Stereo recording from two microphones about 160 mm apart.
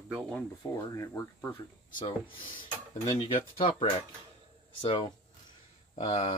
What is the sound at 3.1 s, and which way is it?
Speech, 35° left (ahead or behind).